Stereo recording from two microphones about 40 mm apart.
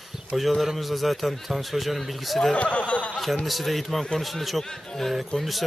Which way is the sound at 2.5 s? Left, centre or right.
Left.